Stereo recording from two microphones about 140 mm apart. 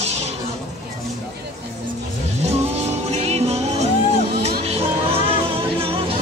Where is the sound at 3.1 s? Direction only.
45° right (ahead or behind).